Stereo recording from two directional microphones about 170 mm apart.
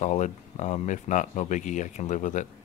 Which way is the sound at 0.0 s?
45° left (ahead or behind).